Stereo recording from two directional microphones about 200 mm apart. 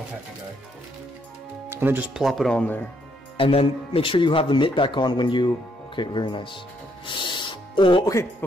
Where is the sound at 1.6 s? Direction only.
10° right (ahead or behind); by 2.8 s 5° left (ahead or behind).